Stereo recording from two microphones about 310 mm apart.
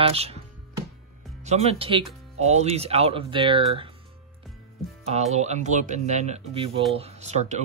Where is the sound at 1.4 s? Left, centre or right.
Right.